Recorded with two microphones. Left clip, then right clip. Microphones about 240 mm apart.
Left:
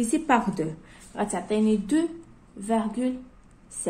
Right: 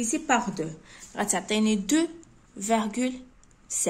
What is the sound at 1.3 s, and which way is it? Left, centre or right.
A woman's voice, right.